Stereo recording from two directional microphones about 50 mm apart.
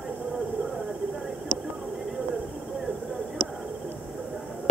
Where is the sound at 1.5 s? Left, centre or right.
Centre.